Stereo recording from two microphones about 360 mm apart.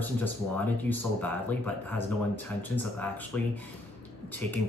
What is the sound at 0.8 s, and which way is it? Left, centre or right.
Speech, centre.